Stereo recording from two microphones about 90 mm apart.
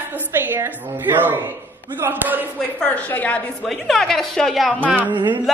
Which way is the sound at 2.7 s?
15° left (ahead or behind).